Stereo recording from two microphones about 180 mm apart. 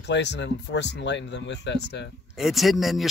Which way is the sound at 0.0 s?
75° left (ahead or behind).